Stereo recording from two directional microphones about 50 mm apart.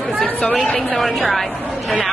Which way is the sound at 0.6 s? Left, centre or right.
Left.